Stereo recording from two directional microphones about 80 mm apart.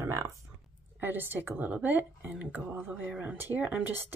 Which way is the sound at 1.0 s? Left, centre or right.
Right.